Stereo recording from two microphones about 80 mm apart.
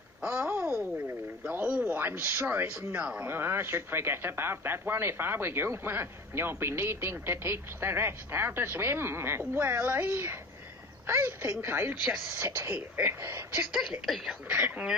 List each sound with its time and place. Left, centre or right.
0.2 s a sound: centre
1.5 s speech: centre
12.7 s speech: right
13.7 s speech: centre
14.5 s speech: centre